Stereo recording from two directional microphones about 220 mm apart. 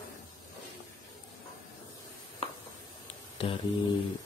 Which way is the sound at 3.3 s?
25° left (ahead or behind).